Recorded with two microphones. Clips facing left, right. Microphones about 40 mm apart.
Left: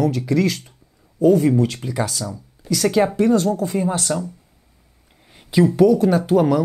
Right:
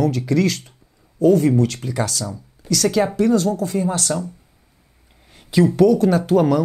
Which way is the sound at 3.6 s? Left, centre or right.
Left.